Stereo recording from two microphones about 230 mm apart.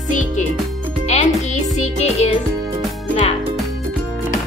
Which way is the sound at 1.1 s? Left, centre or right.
Left.